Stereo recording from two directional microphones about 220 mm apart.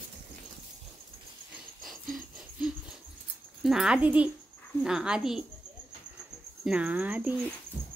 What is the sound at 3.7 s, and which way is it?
Speech, 5° right (ahead or behind).